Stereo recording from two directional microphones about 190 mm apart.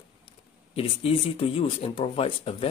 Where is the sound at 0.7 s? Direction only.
30° left (ahead or behind).